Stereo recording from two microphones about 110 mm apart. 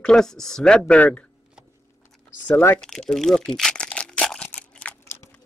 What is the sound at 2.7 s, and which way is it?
Crumpling, 5° left (ahead or behind).